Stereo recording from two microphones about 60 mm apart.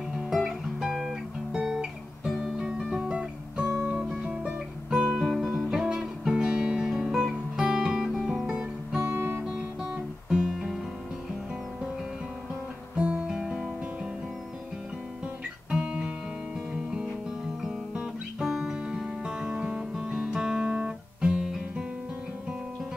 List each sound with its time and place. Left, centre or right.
0.1 s guitar: centre
2.3 s music: centre
4.9 s guitar: centre
9.0 s guitar: right
10.3 s music: centre
12.9 s guitar: centre
13.4 s music: centre
15.7 s guitar: centre
18.4 s music: centre